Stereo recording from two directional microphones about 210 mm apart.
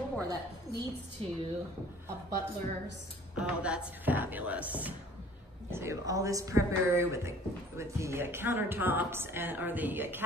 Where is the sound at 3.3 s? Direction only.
5° right (ahead or behind).